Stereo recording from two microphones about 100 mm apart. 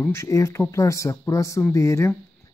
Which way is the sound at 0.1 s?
30° left (ahead or behind).